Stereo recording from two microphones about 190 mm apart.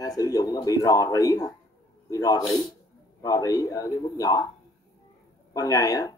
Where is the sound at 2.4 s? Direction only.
Centre (ahead or behind).